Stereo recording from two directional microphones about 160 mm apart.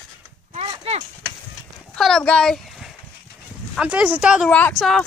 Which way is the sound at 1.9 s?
Centre (ahead or behind).